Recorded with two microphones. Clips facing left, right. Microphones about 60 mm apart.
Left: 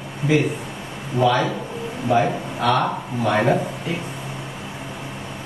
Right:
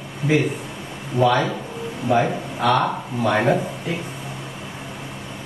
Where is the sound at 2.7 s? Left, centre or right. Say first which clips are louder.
Right 1 dB; centre.